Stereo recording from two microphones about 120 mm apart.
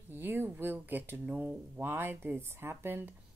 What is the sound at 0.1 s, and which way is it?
Speech, 15° right (ahead or behind).